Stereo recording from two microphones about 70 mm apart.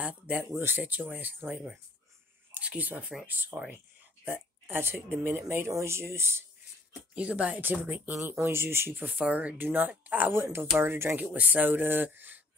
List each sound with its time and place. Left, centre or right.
0.0 s speech: centre
0.5 s speech: right
7.2 s speech: centre
8.2 s speech: right
9.0 s speech: right
11.1 s speech: right